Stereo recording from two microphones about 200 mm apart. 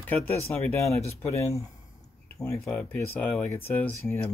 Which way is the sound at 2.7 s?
10° left (ahead or behind).